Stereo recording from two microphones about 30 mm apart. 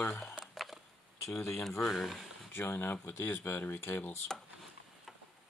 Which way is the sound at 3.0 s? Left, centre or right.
Left.